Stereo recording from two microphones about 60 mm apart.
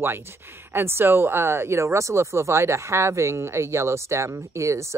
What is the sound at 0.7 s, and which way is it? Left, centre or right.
Speech, right.